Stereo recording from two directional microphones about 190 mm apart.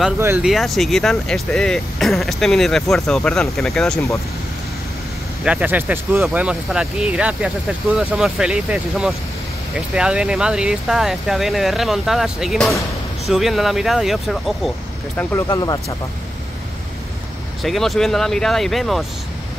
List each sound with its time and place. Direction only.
0.2 s speech: 10° right (ahead or behind)
0.5 s speech: centre (ahead or behind)
5.4 s speech: 5° right (ahead or behind)
15.1 s speech: 20° left (ahead or behind)
17.6 s speech: centre (ahead or behind)